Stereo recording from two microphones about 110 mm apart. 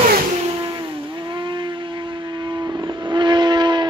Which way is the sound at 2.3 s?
45° right (ahead or behind).